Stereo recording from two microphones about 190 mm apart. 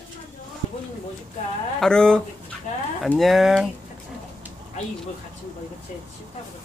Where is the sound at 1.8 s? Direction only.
5° left (ahead or behind).